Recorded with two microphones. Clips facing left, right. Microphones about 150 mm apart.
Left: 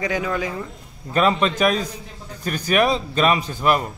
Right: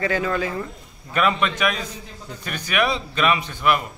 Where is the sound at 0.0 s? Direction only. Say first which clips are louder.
Right 1 dB; 15° left (ahead or behind).